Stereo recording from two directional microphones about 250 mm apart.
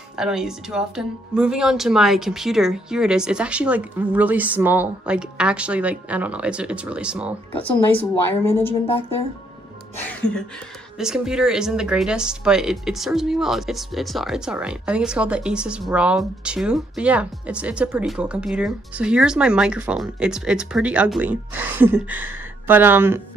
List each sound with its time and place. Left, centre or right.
0.1 s speech: centre
8.3 s a woman's voice: centre
8.8 s speech: left
11.0 s speech: centre